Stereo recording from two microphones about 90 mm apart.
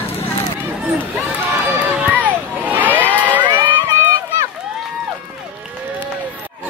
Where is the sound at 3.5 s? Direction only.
60° right (ahead or behind).